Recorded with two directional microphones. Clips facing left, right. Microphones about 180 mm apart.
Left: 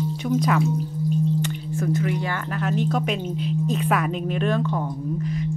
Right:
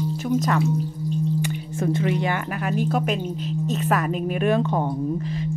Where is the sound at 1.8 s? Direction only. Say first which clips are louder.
Right 1 dB; 25° right (ahead or behind).